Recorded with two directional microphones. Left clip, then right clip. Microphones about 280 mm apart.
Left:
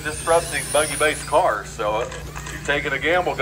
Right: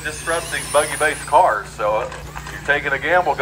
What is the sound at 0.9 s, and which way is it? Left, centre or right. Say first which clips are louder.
Speech: right 5 dB; left.